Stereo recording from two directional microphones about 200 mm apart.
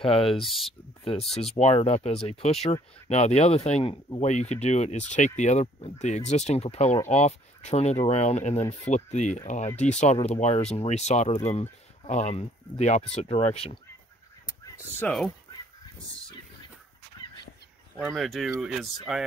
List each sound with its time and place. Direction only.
0.0 s speech: 30° left (ahead or behind)
0.3 s speech: centre (ahead or behind)
1.3 s speech: 30° left (ahead or behind)
15.0 s speech: 5° left (ahead or behind)
17.9 s speech: centre (ahead or behind)